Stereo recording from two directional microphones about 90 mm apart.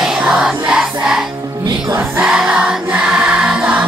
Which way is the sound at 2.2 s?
10° right (ahead or behind).